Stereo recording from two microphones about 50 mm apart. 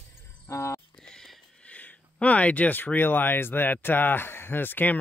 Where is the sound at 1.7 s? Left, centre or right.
Left.